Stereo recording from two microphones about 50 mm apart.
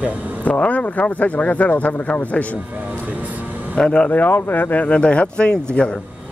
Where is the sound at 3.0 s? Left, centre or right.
Right.